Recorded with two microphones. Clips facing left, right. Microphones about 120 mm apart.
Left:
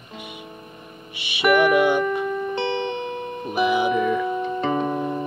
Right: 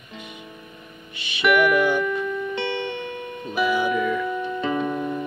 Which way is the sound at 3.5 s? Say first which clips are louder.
Left 2 dB; 20° left (ahead or behind).